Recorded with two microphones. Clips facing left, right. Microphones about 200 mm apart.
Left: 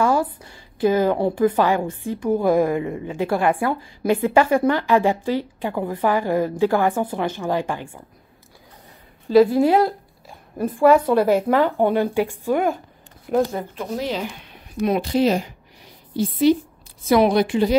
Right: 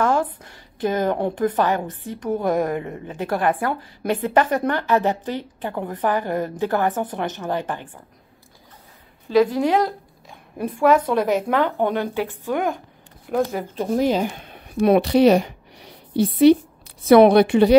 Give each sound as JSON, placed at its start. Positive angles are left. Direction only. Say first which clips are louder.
{"t": 0.0, "sound": "a woman's voice", "louder": "left 1 dB", "side_deg": 10}
{"t": 9.4, "sound": "a woman's voice", "louder": "left 3 dB", "side_deg": 10}
{"t": 13.8, "sound": "a woman's voice", "louder": "right 8 dB", "side_deg": -45}